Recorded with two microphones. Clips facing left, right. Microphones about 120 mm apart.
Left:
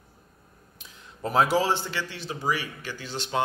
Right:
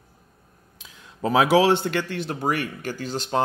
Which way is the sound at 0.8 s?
90° right.